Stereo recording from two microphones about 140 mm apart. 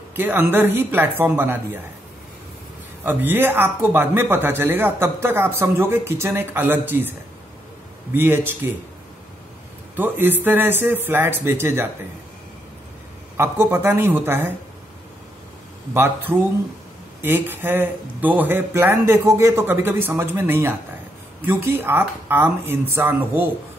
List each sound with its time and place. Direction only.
0.1 s speech: 15° right (ahead or behind)
3.1 s speech: 15° right (ahead or behind)
9.9 s speech: 15° right (ahead or behind)
13.4 s speech: 15° right (ahead or behind)
15.9 s speech: 15° right (ahead or behind)